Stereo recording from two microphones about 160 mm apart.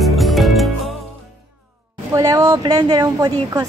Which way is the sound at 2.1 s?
20° right (ahead or behind).